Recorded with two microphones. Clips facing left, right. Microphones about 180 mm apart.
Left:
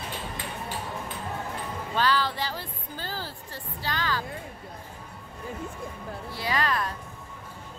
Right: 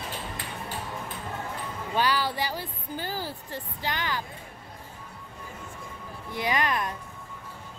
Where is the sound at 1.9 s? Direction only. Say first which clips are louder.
Even; 15° right (ahead or behind).